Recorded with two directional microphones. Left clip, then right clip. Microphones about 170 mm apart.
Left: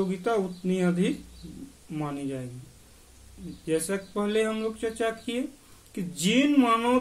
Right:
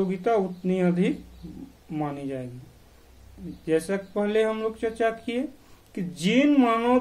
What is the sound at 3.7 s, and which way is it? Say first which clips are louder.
Speech: right 3 dB; 10° left (ahead or behind).